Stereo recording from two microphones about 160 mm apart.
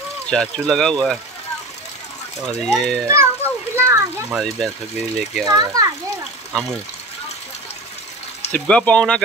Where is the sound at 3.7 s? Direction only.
15° right (ahead or behind).